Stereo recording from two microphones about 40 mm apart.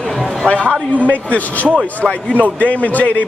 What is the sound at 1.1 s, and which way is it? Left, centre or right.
A man's voice, left.